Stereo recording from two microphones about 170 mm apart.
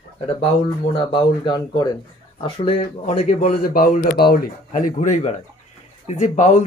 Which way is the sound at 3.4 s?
55° left (ahead or behind).